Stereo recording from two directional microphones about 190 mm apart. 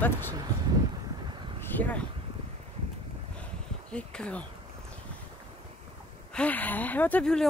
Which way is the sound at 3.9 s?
5° left (ahead or behind).